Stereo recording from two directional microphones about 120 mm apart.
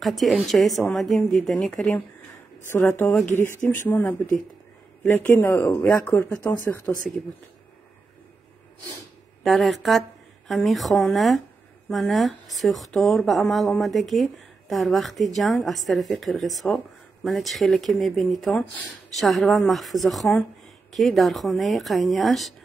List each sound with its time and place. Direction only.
0.0 s speech: centre (ahead or behind); by 5.9 s 20° left (ahead or behind)
5.9 s speech: 10° left (ahead or behind)
9.4 s speech: centre (ahead or behind)